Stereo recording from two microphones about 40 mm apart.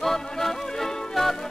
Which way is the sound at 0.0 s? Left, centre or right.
Centre.